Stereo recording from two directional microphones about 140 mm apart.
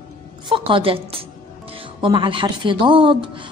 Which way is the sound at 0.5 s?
40° right (ahead or behind).